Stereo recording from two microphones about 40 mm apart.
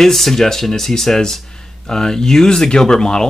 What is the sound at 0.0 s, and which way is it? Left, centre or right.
Speech, centre.